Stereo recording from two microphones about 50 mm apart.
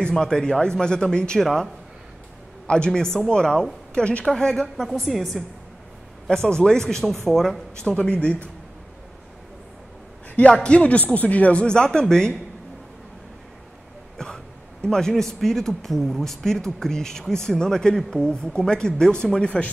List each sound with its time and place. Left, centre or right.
0.0 s a woman's voice: centre
4.3 s a woman's voice: centre
6.2 s speech: centre
7.7 s speech: centre
10.6 s speech: left
11.6 s speech: centre
14.1 s speech: centre